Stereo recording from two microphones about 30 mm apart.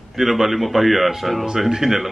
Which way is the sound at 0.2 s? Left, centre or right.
Centre.